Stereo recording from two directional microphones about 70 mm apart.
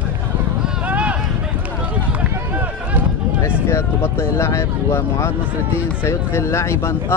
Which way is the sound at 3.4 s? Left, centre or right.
Left.